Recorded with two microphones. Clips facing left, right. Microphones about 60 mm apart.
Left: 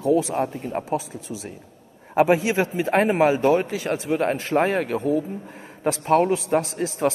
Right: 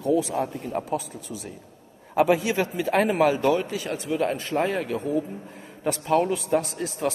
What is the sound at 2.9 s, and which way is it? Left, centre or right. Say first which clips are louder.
A man's voice: left 2 dB; left.